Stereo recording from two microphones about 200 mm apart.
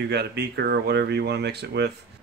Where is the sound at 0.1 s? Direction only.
55° right (ahead or behind).